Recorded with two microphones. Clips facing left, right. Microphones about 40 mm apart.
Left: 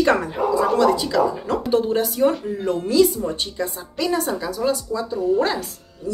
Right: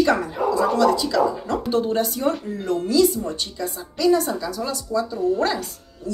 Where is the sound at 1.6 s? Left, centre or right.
Centre.